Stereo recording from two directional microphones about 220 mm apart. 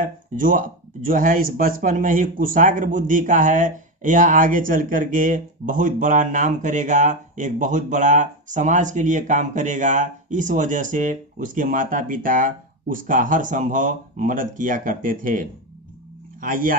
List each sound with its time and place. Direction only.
0.0 s speech: 35° right (ahead or behind)